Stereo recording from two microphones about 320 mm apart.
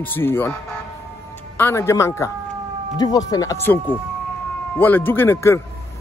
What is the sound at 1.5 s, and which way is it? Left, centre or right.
Speech, centre.